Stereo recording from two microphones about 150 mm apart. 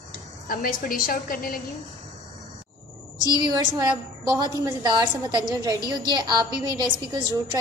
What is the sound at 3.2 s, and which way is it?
Speech, 25° left (ahead or behind).